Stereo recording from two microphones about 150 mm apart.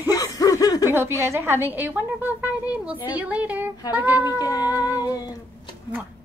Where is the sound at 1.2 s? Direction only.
15° right (ahead or behind).